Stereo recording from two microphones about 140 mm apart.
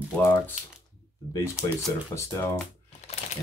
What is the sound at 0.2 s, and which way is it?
Speech, 15° left (ahead or behind).